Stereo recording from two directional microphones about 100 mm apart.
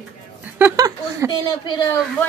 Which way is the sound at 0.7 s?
40° right (ahead or behind).